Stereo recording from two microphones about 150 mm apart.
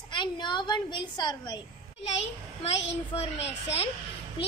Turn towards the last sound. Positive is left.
turn(degrees=45)  # may be behind; listen again after turning